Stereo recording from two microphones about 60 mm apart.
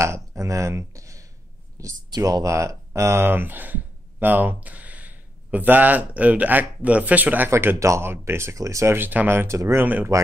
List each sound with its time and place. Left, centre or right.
0.0 s speech: right
7.5 s speech: right
8.0 s speech: right
8.5 s speech: right
8.9 s speech: right
9.3 s speech: right
9.8 s speech: right